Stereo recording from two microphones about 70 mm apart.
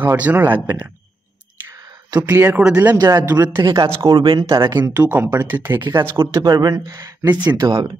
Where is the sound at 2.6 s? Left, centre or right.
Centre.